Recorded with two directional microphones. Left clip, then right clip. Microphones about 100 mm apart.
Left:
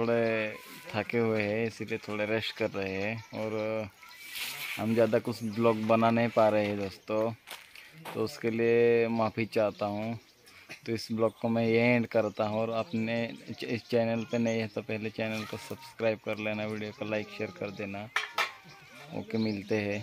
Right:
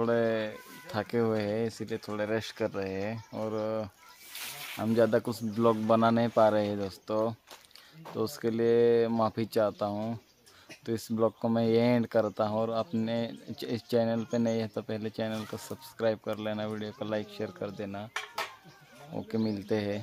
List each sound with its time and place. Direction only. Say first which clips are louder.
0.0 s speech: even; 20° right (ahead or behind)
8.1 s speech: even; 45° left (ahead or behind)
8.5 s speech: even; 15° right (ahead or behind)
18.1 s dishes: left 7 dB; 40° right (ahead or behind)
19.3 s speech: even; 10° right (ahead or behind)